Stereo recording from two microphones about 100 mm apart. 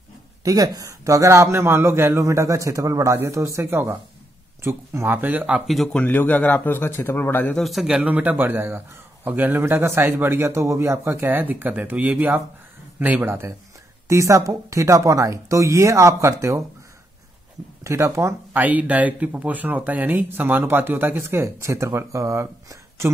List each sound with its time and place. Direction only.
0.4 s a man's voice: 35° right (ahead or behind); by 5.6 s 15° right (ahead or behind)
5.9 s speech: 15° left (ahead or behind)
7.5 s a man's voice: centre (ahead or behind); by 16.6 s 30° right (ahead or behind)
17.8 s a man's voice: 30° right (ahead or behind)
18.5 s speech: 15° right (ahead or behind)